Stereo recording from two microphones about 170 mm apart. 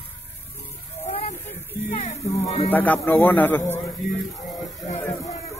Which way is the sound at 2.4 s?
40° left (ahead or behind).